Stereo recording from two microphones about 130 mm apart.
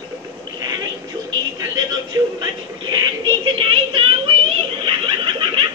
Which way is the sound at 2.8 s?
40° right (ahead or behind).